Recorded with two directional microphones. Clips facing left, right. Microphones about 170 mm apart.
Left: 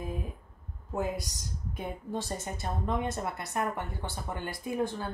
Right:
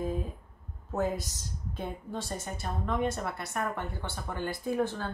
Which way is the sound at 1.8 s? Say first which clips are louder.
Left 1 dB; 20° left (ahead or behind).